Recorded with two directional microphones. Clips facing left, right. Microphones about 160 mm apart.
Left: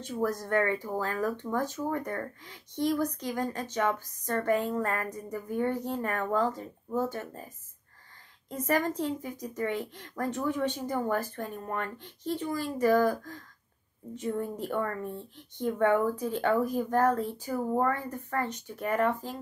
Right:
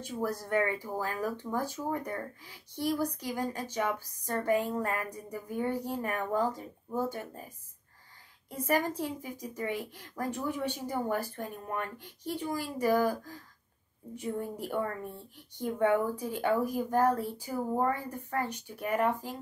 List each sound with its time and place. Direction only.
0.0 s speech: 10° right (ahead or behind)